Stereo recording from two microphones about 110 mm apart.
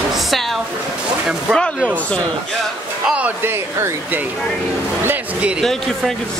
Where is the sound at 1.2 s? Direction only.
5° left (ahead or behind).